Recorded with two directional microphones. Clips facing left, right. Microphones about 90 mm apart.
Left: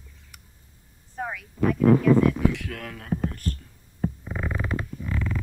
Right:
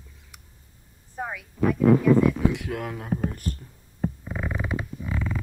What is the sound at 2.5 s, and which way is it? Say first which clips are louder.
Speech: right 4 dB; 20° right (ahead or behind).